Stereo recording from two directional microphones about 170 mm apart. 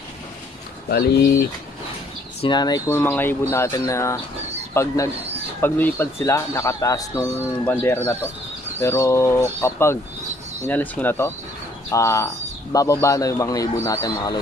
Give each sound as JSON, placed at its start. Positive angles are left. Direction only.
{"t": 0.8, "sound": "speech", "side_deg": 65}
{"t": 2.4, "sound": "speech", "side_deg": 25}
{"t": 3.0, "sound": "speech", "side_deg": 10}
{"t": 7.6, "sound": "speech", "side_deg": 10}